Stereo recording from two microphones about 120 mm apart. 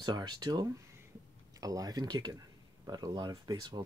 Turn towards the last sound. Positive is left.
turn(degrees=-35)  # may be behind; listen again after turning